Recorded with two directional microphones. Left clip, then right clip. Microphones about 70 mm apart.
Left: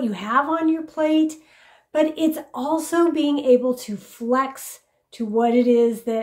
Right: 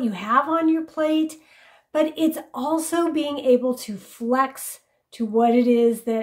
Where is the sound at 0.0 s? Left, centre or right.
Right.